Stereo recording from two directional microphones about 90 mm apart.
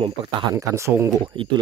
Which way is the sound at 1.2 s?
65° right (ahead or behind).